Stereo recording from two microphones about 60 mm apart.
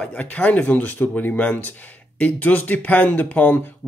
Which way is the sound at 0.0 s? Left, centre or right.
Left.